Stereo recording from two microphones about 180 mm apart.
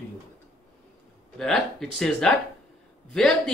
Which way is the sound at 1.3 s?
Centre (ahead or behind).